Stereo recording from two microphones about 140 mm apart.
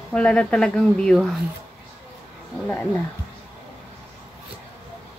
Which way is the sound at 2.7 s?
15° left (ahead or behind).